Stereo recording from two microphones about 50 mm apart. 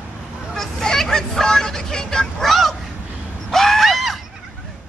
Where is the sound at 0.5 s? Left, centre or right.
Centre.